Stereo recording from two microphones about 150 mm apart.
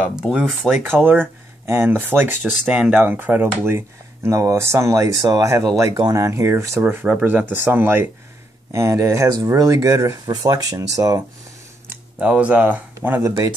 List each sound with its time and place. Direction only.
0.2 s speech: 5° right (ahead or behind); by 11.2 s 20° right (ahead or behind)
12.2 s speech: 10° right (ahead or behind)